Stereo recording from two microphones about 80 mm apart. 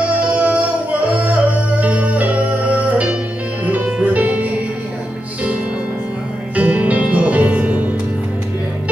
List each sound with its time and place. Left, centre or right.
0.0 s music: centre
6.5 s music: centre